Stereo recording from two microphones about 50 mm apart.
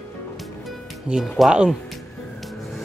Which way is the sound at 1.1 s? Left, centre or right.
Right.